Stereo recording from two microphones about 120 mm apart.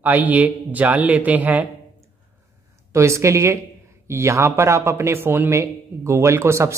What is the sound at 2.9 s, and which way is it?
A man's voice, 25° right (ahead or behind).